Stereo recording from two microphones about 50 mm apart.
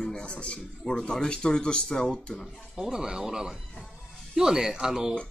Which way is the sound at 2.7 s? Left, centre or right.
Centre.